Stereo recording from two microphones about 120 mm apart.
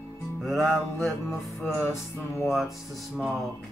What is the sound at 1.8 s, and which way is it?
Music, 25° left (ahead or behind).